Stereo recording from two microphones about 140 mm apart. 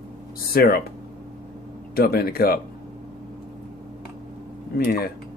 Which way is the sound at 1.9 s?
90° left.